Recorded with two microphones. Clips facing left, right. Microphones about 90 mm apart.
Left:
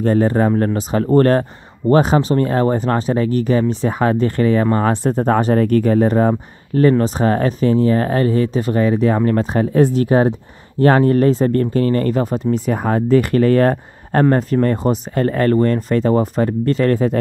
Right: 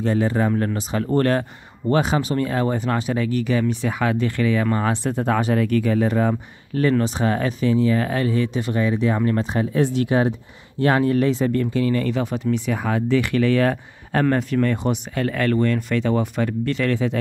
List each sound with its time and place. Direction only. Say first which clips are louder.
0.0 s speech: left 5 dB; 45° left (ahead or behind)